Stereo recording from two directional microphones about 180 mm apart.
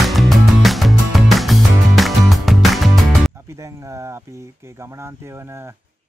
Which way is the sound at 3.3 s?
15° right (ahead or behind).